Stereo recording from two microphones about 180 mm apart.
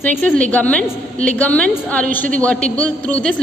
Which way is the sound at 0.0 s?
10° left (ahead or behind).